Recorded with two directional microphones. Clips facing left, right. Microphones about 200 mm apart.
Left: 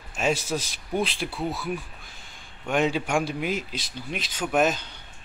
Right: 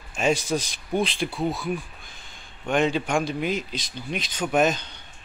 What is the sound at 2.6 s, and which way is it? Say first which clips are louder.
A man's voice: right 1 dB; 5° left (ahead or behind).